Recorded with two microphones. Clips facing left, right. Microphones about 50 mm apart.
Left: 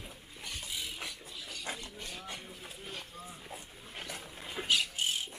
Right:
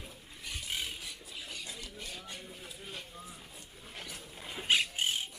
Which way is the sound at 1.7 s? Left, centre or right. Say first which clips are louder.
Left 5 dB; left.